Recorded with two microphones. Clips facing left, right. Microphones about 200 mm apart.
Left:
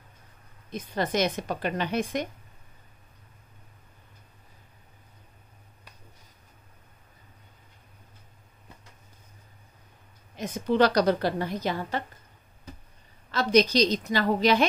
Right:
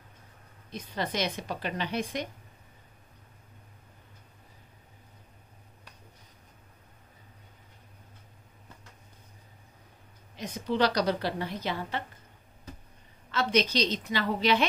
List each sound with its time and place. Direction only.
0.7 s a woman's voice: 50° left (ahead or behind)
10.3 s a woman's voice: 50° left (ahead or behind)
13.3 s a woman's voice: 40° left (ahead or behind)